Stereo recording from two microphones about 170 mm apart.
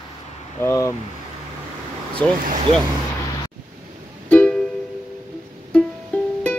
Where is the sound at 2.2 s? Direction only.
5° left (ahead or behind).